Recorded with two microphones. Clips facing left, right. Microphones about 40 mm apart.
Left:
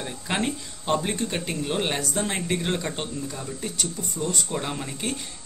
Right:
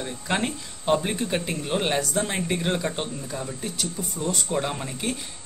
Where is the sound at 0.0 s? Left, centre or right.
Centre.